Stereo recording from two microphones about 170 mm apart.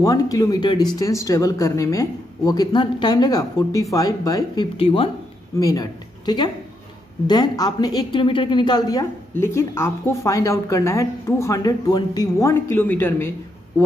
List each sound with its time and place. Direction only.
0.0 s speech: 20° left (ahead or behind)
4.7 s speech: 35° left (ahead or behind)
5.6 s a woman's voice: 20° left (ahead or behind)